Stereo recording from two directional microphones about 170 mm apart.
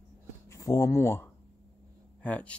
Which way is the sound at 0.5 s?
20° left (ahead or behind).